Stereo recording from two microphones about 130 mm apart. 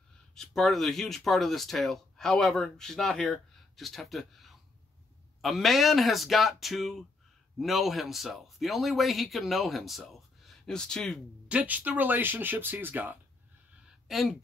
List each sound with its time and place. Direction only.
0.3 s speech: centre (ahead or behind)
11.4 s speech: 10° right (ahead or behind)
14.0 s speech: centre (ahead or behind)